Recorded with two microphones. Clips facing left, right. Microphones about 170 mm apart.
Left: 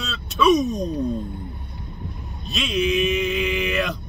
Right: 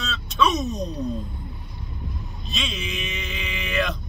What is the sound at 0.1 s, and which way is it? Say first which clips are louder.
Speech: left 5 dB; 5° left (ahead or behind).